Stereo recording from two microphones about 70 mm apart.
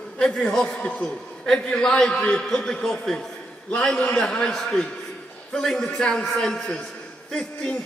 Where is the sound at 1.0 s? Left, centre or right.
Centre.